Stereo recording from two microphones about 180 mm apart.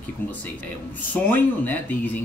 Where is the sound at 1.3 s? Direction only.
10° left (ahead or behind).